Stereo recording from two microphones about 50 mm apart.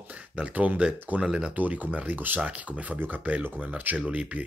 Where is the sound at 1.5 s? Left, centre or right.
Right.